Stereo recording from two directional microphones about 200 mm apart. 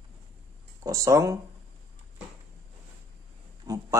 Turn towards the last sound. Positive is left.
turn(degrees=-15)  # may be behind; listen again after turning